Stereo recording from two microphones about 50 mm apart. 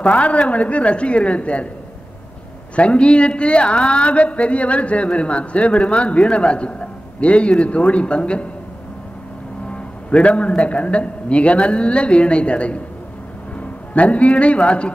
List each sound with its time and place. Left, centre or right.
0.0 s speech: left
2.7 s speech: left
9.7 s a man's voice: left